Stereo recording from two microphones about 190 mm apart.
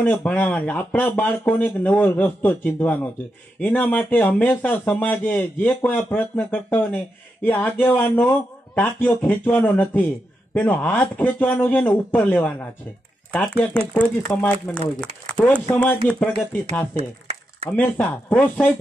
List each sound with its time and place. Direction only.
0.0 s a man's voice: 5° left (ahead or behind)
16.9 s a sound: 30° right (ahead or behind)
17.6 s a man's voice: 10° left (ahead or behind)